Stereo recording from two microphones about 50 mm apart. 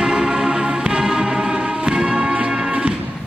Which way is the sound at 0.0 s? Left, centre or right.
Centre.